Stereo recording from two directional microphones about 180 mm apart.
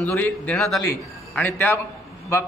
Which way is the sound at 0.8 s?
15° left (ahead or behind).